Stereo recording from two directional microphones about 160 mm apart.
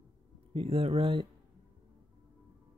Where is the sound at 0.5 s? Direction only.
35° right (ahead or behind).